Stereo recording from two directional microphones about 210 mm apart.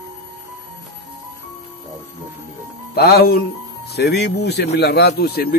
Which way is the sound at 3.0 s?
50° left (ahead or behind).